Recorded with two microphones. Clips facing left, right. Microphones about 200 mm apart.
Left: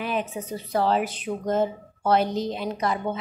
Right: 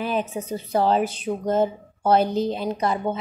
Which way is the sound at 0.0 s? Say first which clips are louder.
Right 3 dB; 35° right (ahead or behind).